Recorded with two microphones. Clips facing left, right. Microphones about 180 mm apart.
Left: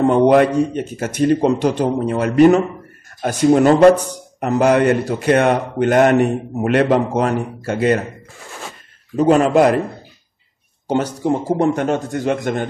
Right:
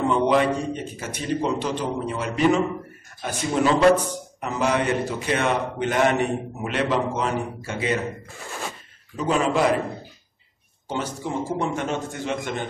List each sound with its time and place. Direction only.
0.0 s a man's voice: 55° left (ahead or behind)
1.3 s a man's voice: 50° left (ahead or behind)
9.1 s a man's voice: 65° left (ahead or behind)
11.5 s a man's voice: 60° left (ahead or behind)